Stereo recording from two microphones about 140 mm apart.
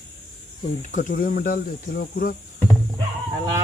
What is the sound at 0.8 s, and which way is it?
Speech, 65° left (ahead or behind).